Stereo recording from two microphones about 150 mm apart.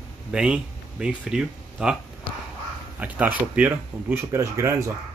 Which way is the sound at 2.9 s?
10° right (ahead or behind).